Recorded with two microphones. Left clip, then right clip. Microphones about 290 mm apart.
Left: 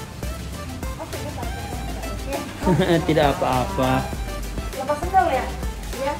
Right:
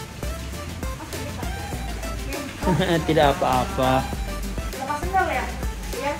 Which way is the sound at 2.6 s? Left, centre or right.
Centre.